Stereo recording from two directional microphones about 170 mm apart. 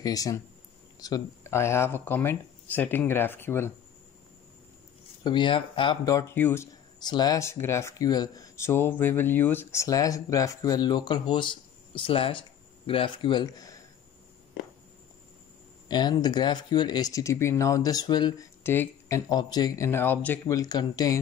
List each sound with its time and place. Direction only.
0.0 s speech: 20° left (ahead or behind)
5.2 s speech: 30° left (ahead or behind)
15.9 s speech: 25° left (ahead or behind)
18.6 s speech: 15° left (ahead or behind)